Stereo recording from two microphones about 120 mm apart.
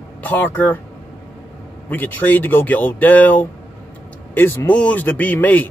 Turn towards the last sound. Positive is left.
turn(degrees=15)  # may be behind; listen again after turning